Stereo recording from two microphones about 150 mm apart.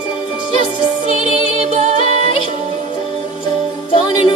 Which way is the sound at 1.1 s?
50° right (ahead or behind).